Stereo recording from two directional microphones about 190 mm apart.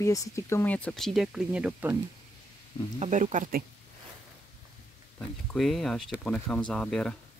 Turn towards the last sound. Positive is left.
turn(degrees=5)  # may be behind; listen again after turning